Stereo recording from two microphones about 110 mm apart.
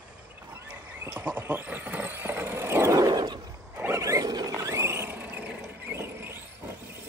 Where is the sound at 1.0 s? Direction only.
25° right (ahead or behind); by 3.4 s 40° right (ahead or behind).